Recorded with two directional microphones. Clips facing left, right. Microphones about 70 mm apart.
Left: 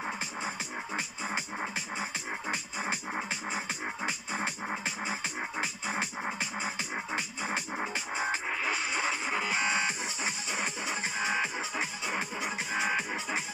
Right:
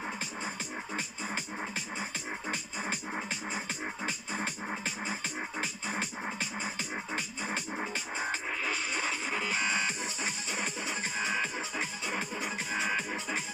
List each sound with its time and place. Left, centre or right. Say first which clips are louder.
0.9 s music: left 3 dB; centre